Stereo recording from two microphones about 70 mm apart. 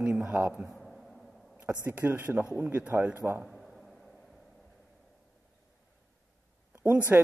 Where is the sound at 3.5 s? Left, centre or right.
Centre.